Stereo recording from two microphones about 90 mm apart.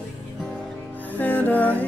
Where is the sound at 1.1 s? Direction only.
20° left (ahead or behind).